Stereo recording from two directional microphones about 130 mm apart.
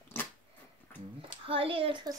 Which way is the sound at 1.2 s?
45° right (ahead or behind).